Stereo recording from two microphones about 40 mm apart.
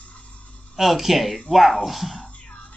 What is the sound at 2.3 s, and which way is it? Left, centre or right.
Music, left.